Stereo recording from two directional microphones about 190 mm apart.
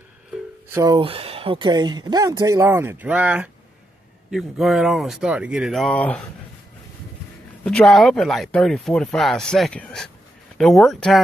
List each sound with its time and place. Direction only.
0.7 s speech: 15° right (ahead or behind); by 6.2 s 5° left (ahead or behind)
7.6 s speech: 5° left (ahead or behind)